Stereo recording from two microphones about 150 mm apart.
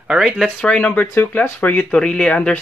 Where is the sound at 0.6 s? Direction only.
10° left (ahead or behind).